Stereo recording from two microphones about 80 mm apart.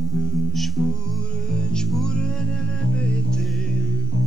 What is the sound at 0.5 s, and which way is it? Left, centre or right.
Music, centre.